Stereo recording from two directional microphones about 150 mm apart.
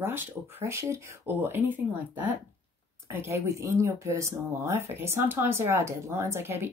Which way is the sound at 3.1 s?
15° right (ahead or behind).